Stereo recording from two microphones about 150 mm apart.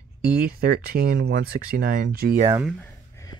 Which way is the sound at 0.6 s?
90° right.